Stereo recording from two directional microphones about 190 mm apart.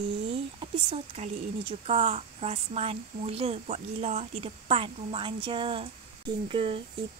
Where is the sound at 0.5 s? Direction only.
30° right (ahead or behind).